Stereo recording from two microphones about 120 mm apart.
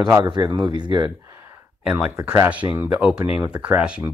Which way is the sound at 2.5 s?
10° right (ahead or behind).